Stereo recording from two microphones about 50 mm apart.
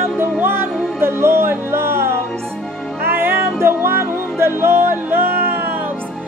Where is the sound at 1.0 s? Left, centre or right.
Right.